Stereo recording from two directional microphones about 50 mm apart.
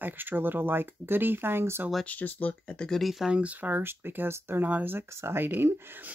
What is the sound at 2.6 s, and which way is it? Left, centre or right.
Speech, left.